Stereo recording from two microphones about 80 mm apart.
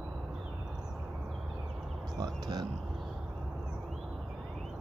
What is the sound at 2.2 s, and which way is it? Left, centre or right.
Speech, right.